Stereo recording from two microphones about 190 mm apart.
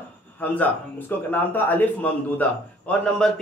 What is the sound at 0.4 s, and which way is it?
A man's voice, 10° left (ahead or behind).